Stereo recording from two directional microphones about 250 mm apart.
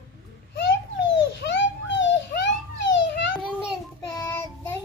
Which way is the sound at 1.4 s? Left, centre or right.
Left.